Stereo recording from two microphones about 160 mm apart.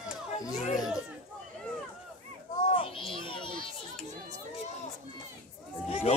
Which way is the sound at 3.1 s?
30° left (ahead or behind).